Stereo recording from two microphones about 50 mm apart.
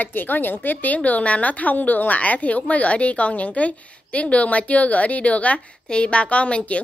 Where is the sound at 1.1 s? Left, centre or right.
Left.